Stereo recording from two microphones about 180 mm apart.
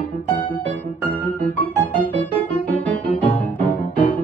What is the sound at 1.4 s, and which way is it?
Music, 10° left (ahead or behind).